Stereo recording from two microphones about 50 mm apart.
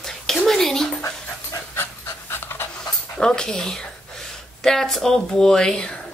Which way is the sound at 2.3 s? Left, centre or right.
Left.